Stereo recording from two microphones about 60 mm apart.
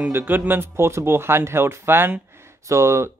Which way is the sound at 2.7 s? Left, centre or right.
Right.